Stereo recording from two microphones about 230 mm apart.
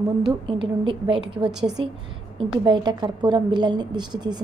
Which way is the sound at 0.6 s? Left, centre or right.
Right.